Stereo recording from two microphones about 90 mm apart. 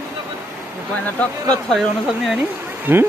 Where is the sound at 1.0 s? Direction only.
15° left (ahead or behind).